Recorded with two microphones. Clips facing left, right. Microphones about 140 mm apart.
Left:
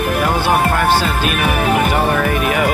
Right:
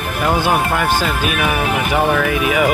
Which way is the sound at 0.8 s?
5° right (ahead or behind).